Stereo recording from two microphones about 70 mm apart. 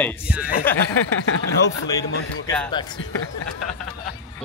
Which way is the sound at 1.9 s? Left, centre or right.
Left.